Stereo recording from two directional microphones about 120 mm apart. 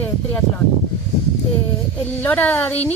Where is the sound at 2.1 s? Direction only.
15° left (ahead or behind).